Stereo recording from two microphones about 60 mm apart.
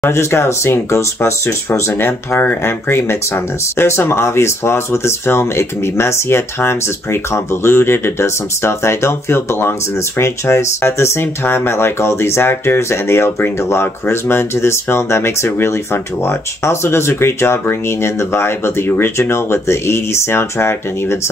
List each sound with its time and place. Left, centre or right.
0.1 s speech: left
10.4 s speech: left
19.3 s speech: left